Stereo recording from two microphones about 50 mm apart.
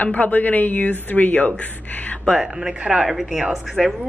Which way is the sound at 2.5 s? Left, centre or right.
Centre.